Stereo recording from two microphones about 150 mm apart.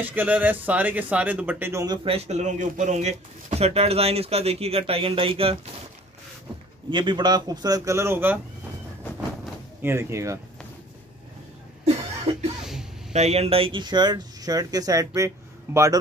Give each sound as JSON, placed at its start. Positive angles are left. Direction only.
{"t": 0.0, "sound": "speech", "side_deg": -10}
{"t": 2.0, "sound": "speech", "side_deg": -45}
{"t": 6.9, "sound": "speech", "side_deg": -30}
{"t": 9.8, "sound": "speech", "side_deg": -15}
{"t": 13.1, "sound": "speech", "side_deg": -45}